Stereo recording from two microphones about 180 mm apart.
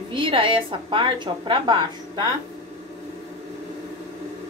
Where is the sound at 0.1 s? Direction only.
30° right (ahead or behind).